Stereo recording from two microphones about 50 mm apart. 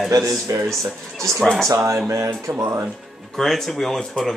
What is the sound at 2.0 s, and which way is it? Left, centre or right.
Speech, right.